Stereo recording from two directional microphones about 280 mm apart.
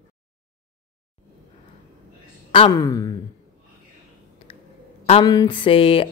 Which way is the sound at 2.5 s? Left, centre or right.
Centre.